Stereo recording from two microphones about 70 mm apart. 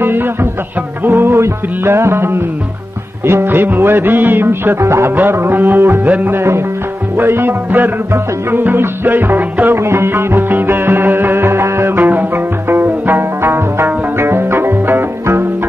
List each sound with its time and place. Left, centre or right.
0.0 s music: right